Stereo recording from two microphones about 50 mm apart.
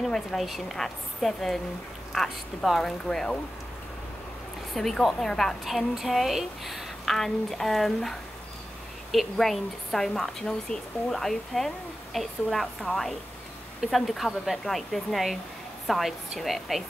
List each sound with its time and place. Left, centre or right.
0.0 s a woman's voice: centre
4.7 s a woman's voice: centre
7.2 s a woman's voice: centre